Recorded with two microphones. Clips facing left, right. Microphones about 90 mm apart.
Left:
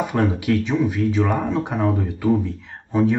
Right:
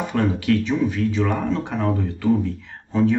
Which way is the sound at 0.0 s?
15° left (ahead or behind).